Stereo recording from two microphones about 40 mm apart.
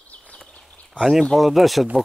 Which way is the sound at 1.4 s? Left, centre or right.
Centre.